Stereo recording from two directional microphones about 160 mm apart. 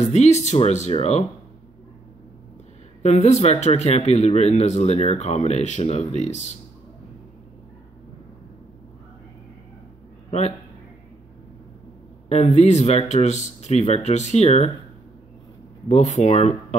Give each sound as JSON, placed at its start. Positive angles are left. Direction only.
{"t": 0.1, "sound": "speech", "side_deg": 45}
{"t": 3.0, "sound": "speech", "side_deg": 45}
{"t": 12.5, "sound": "speech", "side_deg": 45}
{"t": 15.9, "sound": "speech", "side_deg": 45}